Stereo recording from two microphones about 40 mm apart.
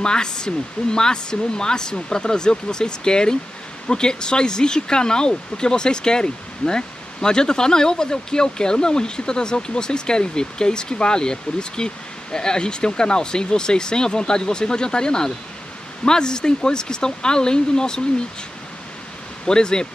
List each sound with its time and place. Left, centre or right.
0.0 s speech: centre
19.4 s speech: left